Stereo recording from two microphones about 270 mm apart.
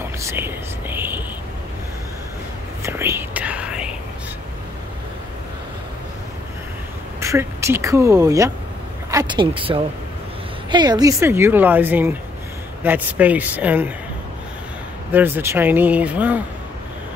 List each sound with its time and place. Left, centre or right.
0.2 s whispering: centre
2.8 s whispering: centre
7.2 s a woman's voice: centre
15.1 s a woman's voice: centre